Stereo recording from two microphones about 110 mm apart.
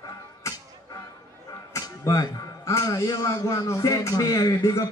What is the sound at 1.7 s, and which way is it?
A man's voice, 30° left (ahead or behind).